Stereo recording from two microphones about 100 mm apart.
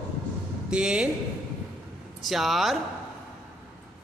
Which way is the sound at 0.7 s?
10° right (ahead or behind).